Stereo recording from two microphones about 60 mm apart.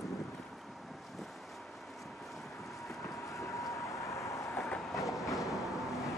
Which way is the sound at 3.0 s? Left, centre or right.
Left.